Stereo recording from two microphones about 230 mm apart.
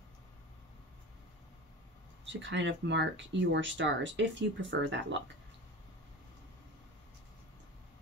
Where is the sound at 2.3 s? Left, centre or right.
Right.